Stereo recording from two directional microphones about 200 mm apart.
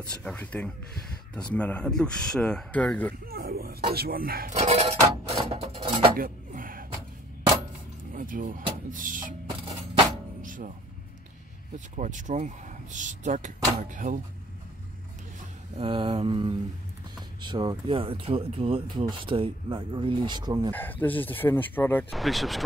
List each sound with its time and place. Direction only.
0.2 s speech: 5° left (ahead or behind)
3.3 s a sound: 50° right (ahead or behind)
3.9 s speech: 50° right (ahead or behind); by 5.9 s 30° right (ahead or behind)
6.1 s a sound: 45° right (ahead or behind)
8.0 s speech: 45° right (ahead or behind)
10.4 s music: 40° right (ahead or behind)
12.0 s speech: 40° right (ahead or behind)
15.8 s speech: 25° right (ahead or behind)
20.7 s speech: 10° left (ahead or behind)